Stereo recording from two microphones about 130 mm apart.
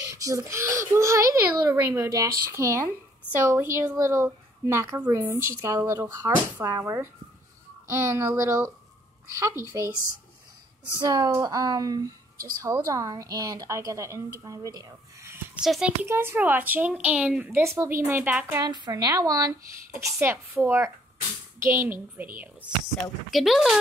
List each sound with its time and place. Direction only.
0.0 s a child's voice: 25° right (ahead or behind)
11.0 s a woman's voice: 35° right (ahead or behind)
15.6 s a child's voice: 5° right (ahead or behind)
16.1 s a woman's voice: 20° right (ahead or behind)
17.5 s a woman's voice: 20° right (ahead or behind)
18.6 s a woman's voice: 30° right (ahead or behind)
23.3 s a child's voice: centre (ahead or behind)